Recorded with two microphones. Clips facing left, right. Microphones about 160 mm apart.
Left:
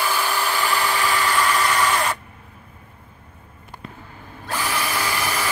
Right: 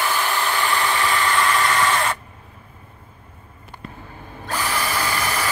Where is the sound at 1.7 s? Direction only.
15° left (ahead or behind).